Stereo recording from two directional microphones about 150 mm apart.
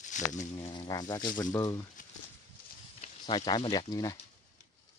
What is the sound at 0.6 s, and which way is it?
Speech, 25° left (ahead or behind).